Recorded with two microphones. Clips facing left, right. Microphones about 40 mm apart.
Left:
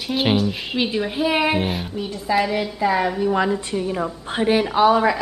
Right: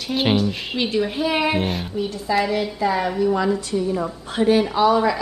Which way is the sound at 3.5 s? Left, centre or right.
Left.